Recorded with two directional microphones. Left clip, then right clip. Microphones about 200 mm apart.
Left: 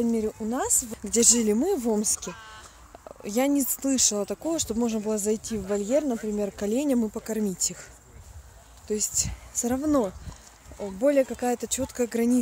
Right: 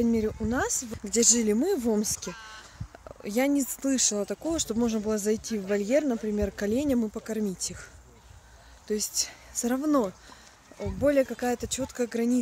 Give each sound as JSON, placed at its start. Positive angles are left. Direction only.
{"t": 0.0, "sound": "speech", "side_deg": -10}
{"t": 0.9, "sound": "speech", "side_deg": 0}
{"t": 2.3, "sound": "speech", "side_deg": -50}
{"t": 3.2, "sound": "speech", "side_deg": 0}
{"t": 8.8, "sound": "speech", "side_deg": -10}